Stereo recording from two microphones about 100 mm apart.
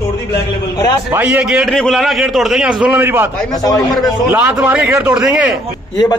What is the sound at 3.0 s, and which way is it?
Speech, 20° right (ahead or behind).